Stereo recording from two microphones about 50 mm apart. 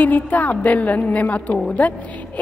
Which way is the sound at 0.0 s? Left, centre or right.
Left.